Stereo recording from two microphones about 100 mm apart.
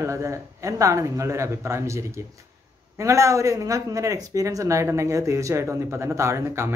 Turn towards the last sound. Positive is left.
turn(degrees=-25)  # may be behind; listen again after turning